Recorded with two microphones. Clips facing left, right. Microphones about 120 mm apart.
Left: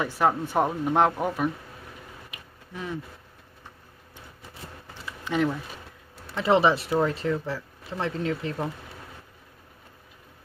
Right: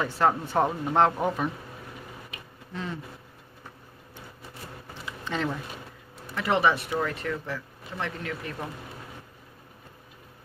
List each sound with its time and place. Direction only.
0.0 s speech: 10° left (ahead or behind)
2.3 s a sound: 10° left (ahead or behind)
5.2 s speech: 10° left (ahead or behind)
6.3 s speech: 25° left (ahead or behind)